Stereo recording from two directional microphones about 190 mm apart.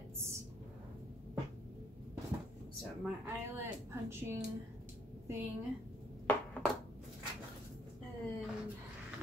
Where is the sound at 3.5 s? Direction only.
15° right (ahead or behind).